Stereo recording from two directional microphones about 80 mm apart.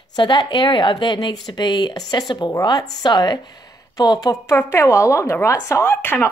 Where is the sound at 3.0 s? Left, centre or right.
Left.